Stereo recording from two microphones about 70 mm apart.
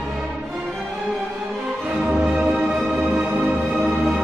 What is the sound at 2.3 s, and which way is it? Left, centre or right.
Music, centre.